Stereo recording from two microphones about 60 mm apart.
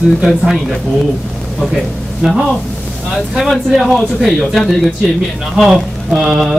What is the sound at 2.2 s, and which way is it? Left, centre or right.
Speech, centre.